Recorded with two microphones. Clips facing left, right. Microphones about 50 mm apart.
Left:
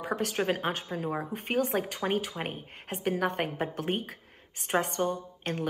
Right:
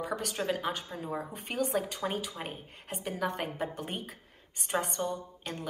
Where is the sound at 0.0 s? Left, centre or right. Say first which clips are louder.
Left 4 dB; left.